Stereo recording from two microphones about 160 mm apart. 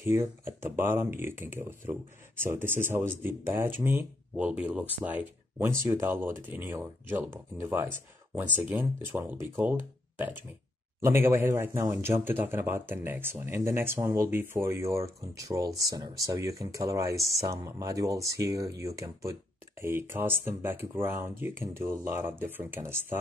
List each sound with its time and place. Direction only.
0.0 s speech: 15° right (ahead or behind)
8.4 s speech: 10° right (ahead or behind)